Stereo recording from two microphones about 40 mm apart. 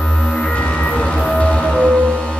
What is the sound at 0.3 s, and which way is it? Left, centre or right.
Music, left.